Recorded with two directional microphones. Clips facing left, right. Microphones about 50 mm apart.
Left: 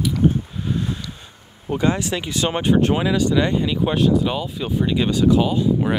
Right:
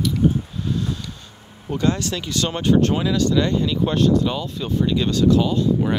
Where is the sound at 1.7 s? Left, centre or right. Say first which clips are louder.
Left 1 dB; centre.